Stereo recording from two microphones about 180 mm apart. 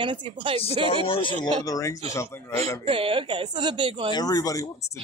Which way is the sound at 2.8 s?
30° right (ahead or behind).